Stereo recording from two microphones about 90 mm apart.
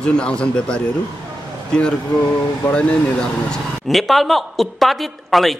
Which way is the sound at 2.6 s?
10° left (ahead or behind).